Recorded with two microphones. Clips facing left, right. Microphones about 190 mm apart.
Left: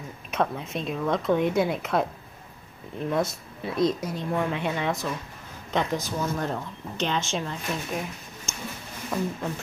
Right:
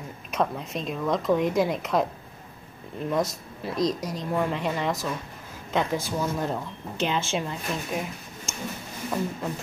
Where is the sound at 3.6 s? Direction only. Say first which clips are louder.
Left 2 dB; centre (ahead or behind).